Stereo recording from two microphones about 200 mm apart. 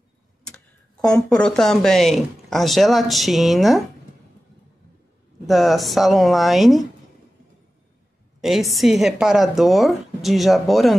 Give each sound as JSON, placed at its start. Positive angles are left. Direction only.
{"t": 1.0, "sound": "speech", "side_deg": 5}
{"t": 5.5, "sound": "speech", "side_deg": 0}
{"t": 8.4, "sound": "speech", "side_deg": 0}